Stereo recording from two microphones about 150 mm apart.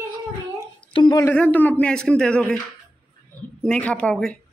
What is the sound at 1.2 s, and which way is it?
A man's voice, 10° left (ahead or behind).